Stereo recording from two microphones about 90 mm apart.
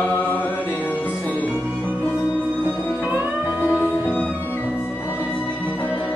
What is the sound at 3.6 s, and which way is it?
Music, 25° left (ahead or behind).